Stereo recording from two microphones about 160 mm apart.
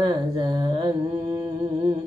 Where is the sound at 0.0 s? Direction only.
25° right (ahead or behind).